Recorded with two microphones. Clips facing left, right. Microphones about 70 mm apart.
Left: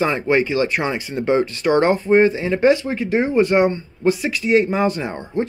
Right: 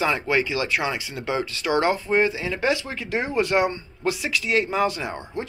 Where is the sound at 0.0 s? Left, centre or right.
Left.